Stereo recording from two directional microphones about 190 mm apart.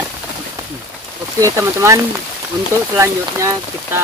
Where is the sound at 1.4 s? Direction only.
15° right (ahead or behind).